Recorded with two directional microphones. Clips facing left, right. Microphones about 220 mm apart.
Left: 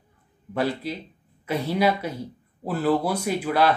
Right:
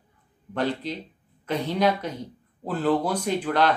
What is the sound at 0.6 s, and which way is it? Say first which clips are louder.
Speech: left 1 dB; 10° left (ahead or behind).